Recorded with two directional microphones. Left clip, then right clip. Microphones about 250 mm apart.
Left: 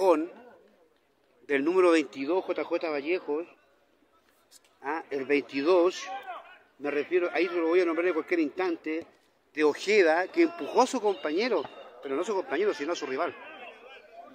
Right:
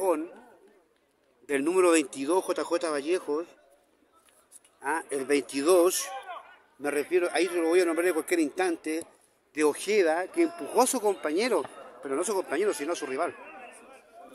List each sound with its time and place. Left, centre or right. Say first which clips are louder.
0.0 s a sound: left 4 dB; left
1.4 s a man's voice: left 1 dB; centre
4.8 s a man's voice: right 2 dB; centre